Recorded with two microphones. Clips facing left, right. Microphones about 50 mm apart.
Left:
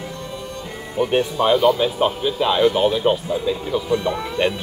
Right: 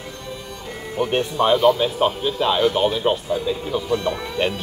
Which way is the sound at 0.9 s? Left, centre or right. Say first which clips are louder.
Left 2 dB; centre.